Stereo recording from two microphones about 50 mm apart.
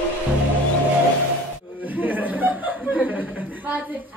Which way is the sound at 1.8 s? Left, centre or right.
Right.